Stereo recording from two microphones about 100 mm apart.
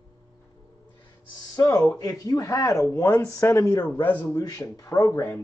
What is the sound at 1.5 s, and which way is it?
Speech, 35° left (ahead or behind).